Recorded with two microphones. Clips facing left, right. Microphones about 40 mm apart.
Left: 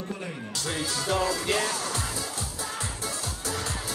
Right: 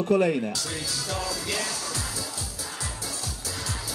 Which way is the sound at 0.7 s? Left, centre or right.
Left.